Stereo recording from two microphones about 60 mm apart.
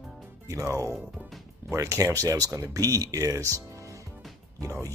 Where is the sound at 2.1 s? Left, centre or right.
Right.